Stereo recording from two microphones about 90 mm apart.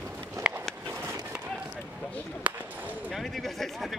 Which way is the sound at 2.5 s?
15° right (ahead or behind).